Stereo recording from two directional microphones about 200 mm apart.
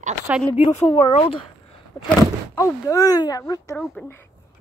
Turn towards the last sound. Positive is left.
turn(degrees=15)  # may be behind; listen again after turning